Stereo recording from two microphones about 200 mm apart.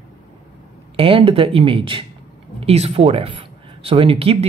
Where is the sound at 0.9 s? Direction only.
25° right (ahead or behind).